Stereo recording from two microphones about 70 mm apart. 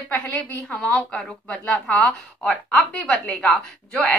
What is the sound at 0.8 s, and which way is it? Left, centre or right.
A woman's voice, centre.